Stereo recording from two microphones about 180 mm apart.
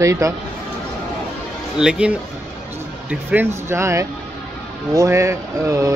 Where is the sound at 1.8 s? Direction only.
5° right (ahead or behind).